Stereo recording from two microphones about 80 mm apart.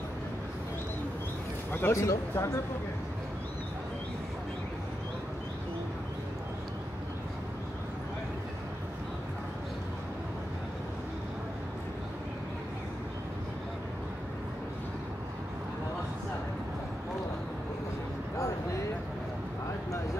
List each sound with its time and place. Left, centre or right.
1.7 s a man's voice: left
2.0 s speech: left